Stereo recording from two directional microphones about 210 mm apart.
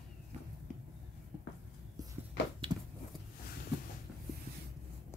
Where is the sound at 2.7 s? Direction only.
20° right (ahead or behind).